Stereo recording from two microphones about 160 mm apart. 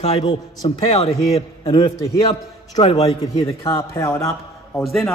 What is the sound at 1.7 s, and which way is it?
A man's voice, 30° left (ahead or behind).